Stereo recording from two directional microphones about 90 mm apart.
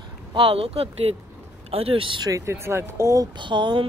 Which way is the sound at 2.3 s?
35° right (ahead or behind).